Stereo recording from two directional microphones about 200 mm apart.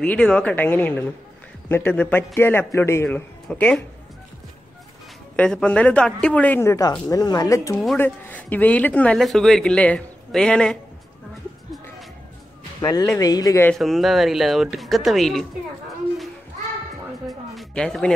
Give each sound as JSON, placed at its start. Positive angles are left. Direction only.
{"t": 0.0, "sound": "speech", "side_deg": 5}
{"t": 5.3, "sound": "speech", "side_deg": 5}
{"t": 7.8, "sound": "speech", "side_deg": 5}
{"t": 12.8, "sound": "speech", "side_deg": 20}
{"t": 13.7, "sound": "speech", "side_deg": 0}
{"t": 17.3, "sound": "music", "side_deg": 0}